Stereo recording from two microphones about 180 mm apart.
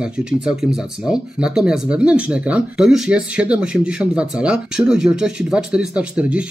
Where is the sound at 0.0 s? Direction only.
5° right (ahead or behind).